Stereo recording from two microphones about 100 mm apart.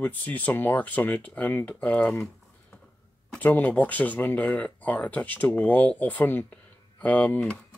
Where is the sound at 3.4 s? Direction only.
15° left (ahead or behind).